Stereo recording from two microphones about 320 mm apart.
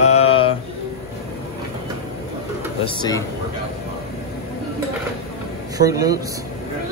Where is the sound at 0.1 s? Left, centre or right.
Left.